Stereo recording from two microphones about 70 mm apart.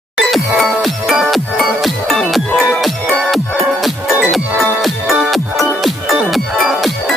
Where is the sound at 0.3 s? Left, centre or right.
Centre.